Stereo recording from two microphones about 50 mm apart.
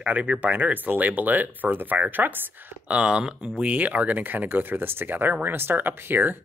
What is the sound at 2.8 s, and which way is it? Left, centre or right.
Speech, right.